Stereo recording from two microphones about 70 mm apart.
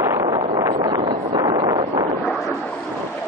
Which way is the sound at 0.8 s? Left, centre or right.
Right.